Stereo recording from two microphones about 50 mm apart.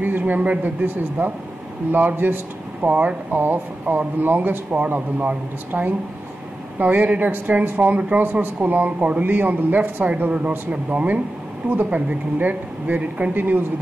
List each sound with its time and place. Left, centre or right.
0.0 s speech: right
8.2 s speech: right